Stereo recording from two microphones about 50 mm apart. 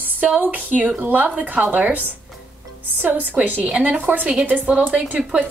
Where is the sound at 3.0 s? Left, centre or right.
Right.